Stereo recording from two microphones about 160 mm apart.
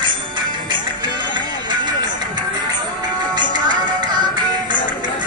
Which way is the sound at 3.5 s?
30° right (ahead or behind).